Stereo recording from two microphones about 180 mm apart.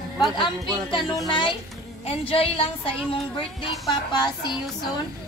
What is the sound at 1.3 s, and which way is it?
A woman's voice, 25° left (ahead or behind).